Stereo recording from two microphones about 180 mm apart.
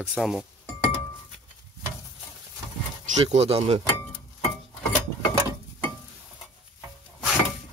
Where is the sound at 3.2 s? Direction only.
35° right (ahead or behind).